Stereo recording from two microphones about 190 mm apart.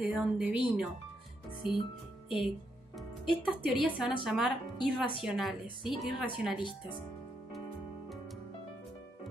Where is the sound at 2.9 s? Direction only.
Centre (ahead or behind).